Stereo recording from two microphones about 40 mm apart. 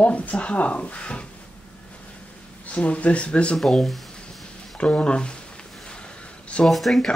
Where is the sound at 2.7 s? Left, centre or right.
Left.